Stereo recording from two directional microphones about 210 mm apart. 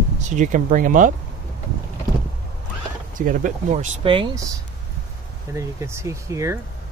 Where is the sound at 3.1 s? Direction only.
40° right (ahead or behind).